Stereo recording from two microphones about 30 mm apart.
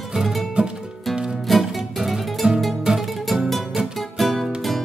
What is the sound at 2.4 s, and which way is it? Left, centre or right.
Music, right.